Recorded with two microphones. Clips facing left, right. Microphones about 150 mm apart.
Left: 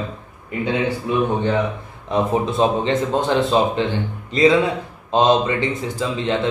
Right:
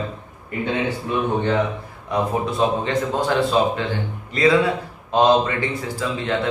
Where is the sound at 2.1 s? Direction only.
25° left (ahead or behind).